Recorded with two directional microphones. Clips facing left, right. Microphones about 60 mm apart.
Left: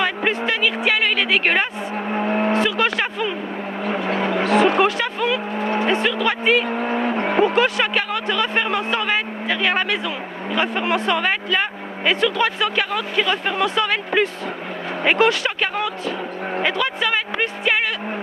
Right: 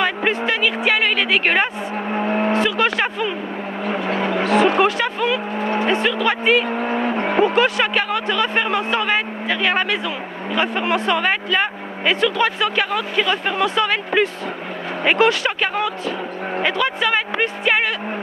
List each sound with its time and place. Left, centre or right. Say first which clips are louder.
0.0 s a sound: right 1 dB; right
0.5 s a woman's voice: right 1 dB; right
2.1 s speech: even; right
2.6 s speech: right 1 dB; right
3.8 s speech: even; right
4.8 s speech: right 1 dB; right
5.6 s speech: even; right
6.0 s speech: right 1 dB; right
6.7 s speech: right 1 dB; right